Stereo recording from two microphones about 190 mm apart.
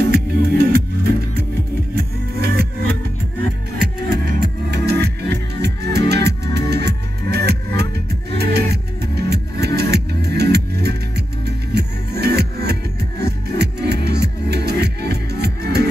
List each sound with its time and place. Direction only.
0.1 s music: 55° right (ahead or behind)
2.0 s music: 55° right (ahead or behind)
4.1 s music: 60° right (ahead or behind)